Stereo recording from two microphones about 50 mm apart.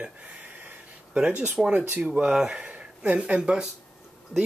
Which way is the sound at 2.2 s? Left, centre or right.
Centre.